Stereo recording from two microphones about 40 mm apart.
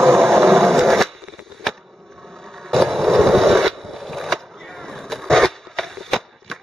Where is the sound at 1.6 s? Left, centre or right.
Centre.